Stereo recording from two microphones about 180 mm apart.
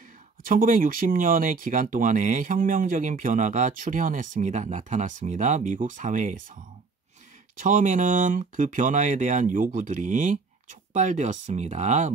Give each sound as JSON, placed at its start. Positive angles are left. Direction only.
{"t": 0.4, "sound": "speech", "side_deg": -50}